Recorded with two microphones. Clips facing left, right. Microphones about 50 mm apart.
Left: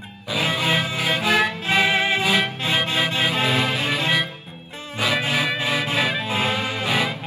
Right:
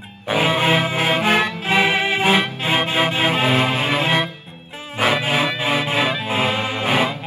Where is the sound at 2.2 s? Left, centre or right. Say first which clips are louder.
Right 3 dB; right.